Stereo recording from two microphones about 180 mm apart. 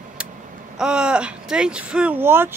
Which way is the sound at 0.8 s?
5° right (ahead or behind).